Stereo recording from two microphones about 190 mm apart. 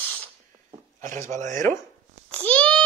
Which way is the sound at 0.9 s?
40° right (ahead or behind).